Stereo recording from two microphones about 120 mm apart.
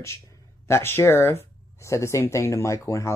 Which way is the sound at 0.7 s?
20° left (ahead or behind).